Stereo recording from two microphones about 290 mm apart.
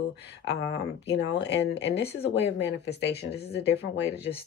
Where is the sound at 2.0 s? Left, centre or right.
Left.